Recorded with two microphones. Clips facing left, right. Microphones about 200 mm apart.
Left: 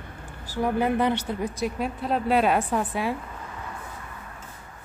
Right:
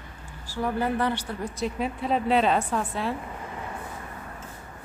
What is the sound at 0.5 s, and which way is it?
Speech, 20° left (ahead or behind).